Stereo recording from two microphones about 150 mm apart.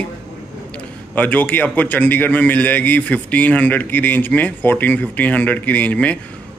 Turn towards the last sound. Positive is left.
turn(degrees=10)  # may be behind; listen again after turning